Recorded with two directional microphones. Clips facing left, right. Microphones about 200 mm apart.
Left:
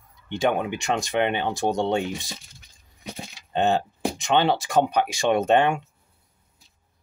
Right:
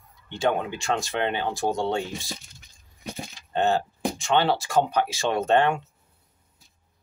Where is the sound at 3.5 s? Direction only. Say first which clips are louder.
Left 1 dB; 20° left (ahead or behind).